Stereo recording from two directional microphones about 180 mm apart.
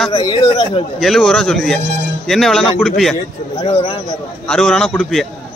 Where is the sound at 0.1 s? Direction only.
25° left (ahead or behind).